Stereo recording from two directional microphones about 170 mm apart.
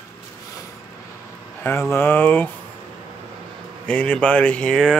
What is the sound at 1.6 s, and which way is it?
Speech, 15° left (ahead or behind).